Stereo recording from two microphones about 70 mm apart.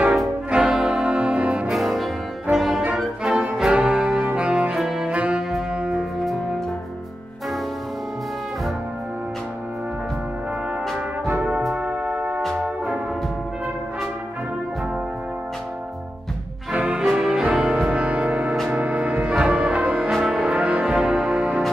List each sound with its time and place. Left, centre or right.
0.5 s brass instrument: centre
1.7 s music: centre
2.5 s brass instrument: centre
3.0 s music: centre
3.7 s music: centre
4.3 s saxophone: centre
5.1 s saxophone: centre
5.8 s music: centre
11.7 s music: centre
12.4 s music: centre
16.7 s music: centre
17.0 s music: centre
17.3 s music: centre
20.1 s music: centre